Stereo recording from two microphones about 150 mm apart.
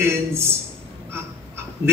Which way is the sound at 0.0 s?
15° right (ahead or behind).